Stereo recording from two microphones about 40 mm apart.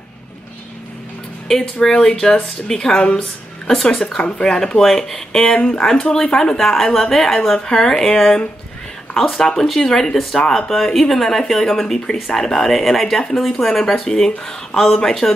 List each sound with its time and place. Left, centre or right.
1.5 s a woman's voice: centre
3.6 s a woman's voice: centre
4.0 s a woman's voice: centre
5.4 s a woman's voice: left
6.3 s a woman's voice: centre